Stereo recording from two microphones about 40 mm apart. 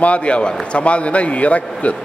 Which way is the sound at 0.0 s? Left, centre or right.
Left.